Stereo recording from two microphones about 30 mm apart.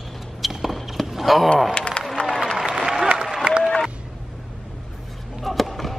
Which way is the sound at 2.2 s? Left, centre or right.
Left.